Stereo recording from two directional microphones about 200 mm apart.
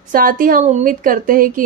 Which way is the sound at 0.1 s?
45° right (ahead or behind).